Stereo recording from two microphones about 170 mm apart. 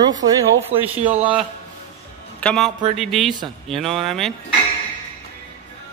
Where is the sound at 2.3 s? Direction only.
5° left (ahead or behind).